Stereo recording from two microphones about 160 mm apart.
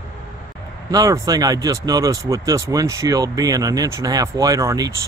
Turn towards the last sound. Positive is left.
turn(degrees=-20)  # may be behind; listen again after turning